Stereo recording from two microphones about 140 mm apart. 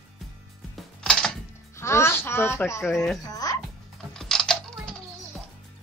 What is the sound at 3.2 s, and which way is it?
Music, 25° left (ahead or behind).